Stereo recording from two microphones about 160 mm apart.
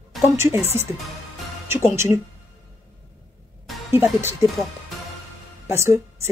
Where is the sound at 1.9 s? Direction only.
15° right (ahead or behind).